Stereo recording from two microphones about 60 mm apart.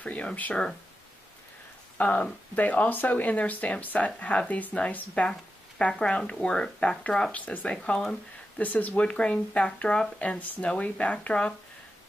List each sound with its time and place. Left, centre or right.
0.0 s speech: left
2.0 s speech: left
10.4 s speech: left
10.7 s speech: centre